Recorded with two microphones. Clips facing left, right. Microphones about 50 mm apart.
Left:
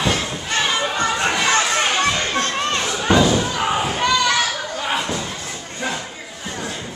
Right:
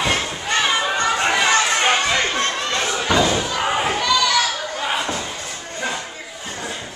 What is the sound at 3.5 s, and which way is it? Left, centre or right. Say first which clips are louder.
Slam: even; centre.